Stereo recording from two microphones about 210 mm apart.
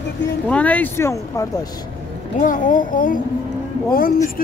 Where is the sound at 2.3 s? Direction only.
40° left (ahead or behind).